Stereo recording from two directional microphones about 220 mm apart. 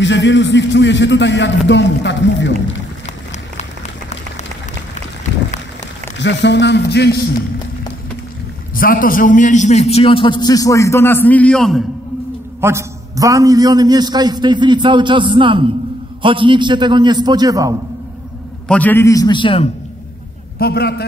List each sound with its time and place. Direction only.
0.0 s a man's voice: 55° left (ahead or behind)
6.1 s a man's voice: 55° left (ahead or behind)
8.7 s a man's voice: 40° left (ahead or behind); by 11.8 s centre (ahead or behind)
12.5 s a man's voice: 10° right (ahead or behind)
18.7 s a man's voice: 5° left (ahead or behind); by 19.7 s 25° left (ahead or behind)
20.5 s a man's voice: 45° left (ahead or behind)